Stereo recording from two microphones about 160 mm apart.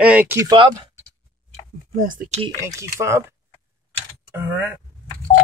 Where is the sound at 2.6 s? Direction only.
20° right (ahead or behind).